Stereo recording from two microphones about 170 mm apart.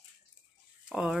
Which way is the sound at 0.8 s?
5° right (ahead or behind).